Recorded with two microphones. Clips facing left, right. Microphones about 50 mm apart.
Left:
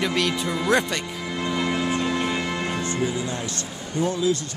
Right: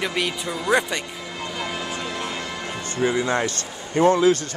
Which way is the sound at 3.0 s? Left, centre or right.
Right.